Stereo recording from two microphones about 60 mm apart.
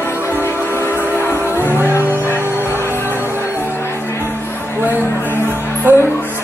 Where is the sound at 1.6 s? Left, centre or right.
Right.